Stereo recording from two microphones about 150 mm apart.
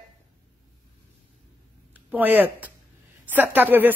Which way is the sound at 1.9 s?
10° right (ahead or behind).